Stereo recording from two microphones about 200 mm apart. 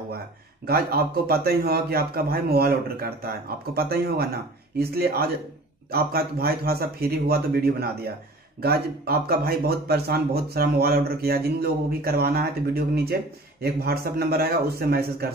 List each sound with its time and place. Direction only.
0.7 s speech: 50° right (ahead or behind)